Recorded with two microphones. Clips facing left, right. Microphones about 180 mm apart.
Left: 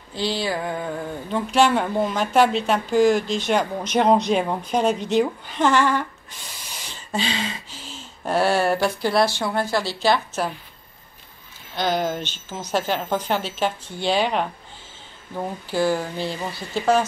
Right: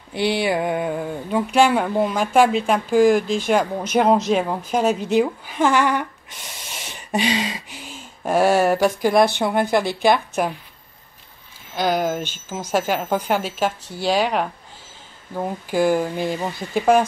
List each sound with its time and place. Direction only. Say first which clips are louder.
0.1 s mantra: right 4 dB; 65° right (ahead or behind)
0.4 s speech: right 5 dB; 15° right (ahead or behind)
7.0 s a sound: right 5 dB; 15° right (ahead or behind)
7.7 s speech: right 2 dB; 10° right (ahead or behind)
11.7 s speech: right 2 dB; 10° right (ahead or behind)